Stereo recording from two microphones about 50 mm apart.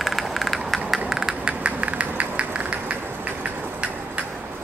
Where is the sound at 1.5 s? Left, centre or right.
Right.